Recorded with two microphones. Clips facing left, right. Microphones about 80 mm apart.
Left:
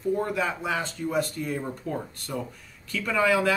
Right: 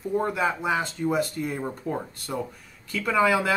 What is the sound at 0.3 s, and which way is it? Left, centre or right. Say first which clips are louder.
Speech: right 3 dB; centre.